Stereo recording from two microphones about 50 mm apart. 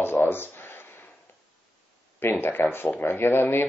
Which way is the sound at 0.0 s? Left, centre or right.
Left.